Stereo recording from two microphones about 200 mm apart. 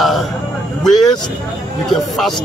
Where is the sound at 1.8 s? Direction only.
Centre (ahead or behind).